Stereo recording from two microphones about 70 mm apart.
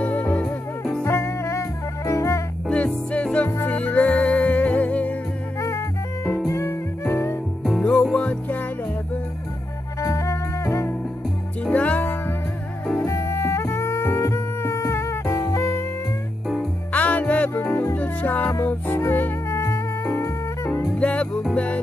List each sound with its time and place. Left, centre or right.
0.0 s music: centre
1.0 s music: left
2.7 s music: centre
3.4 s music: left
5.6 s music: left
7.8 s music: centre
9.9 s music: left
11.6 s music: left
13.0 s music: left
16.9 s music: left
20.9 s music: centre